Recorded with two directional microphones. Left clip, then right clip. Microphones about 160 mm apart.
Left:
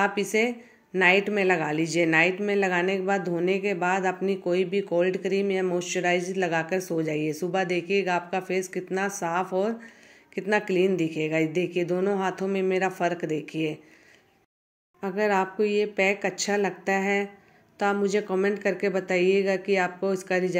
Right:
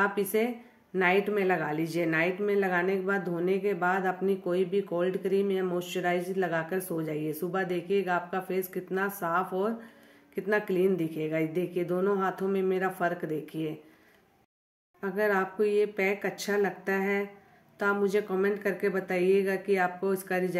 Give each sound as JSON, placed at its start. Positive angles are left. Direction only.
{"t": 0.0, "sound": "a woman's voice", "side_deg": 20}
{"t": 15.0, "sound": "a woman's voice", "side_deg": 15}